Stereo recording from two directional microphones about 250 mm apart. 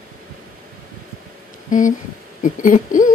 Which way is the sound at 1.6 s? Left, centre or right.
Left.